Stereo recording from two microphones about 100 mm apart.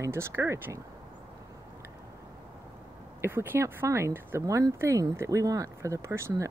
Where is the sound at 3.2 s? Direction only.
25° right (ahead or behind).